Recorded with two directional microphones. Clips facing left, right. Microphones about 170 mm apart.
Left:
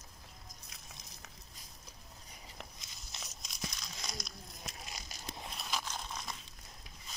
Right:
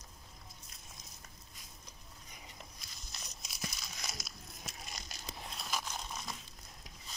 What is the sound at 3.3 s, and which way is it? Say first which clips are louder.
Crumpling: even; 5° right (ahead or behind).